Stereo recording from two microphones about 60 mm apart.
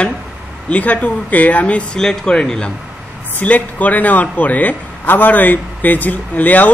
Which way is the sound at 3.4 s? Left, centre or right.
Left.